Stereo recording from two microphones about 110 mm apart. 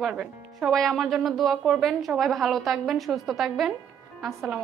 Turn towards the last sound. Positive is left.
turn(degrees=-5)  # may be behind; listen again after turning